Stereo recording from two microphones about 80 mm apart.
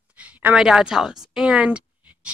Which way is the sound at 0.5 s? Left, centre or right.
Centre.